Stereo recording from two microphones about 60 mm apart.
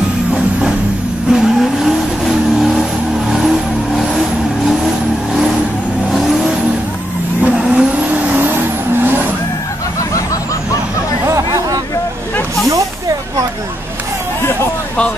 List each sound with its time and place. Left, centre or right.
1.3 s vehicle: centre
6.1 s vehicle: centre
7.4 s vehicle: right
8.1 s vehicle: right
11.2 s chatter: right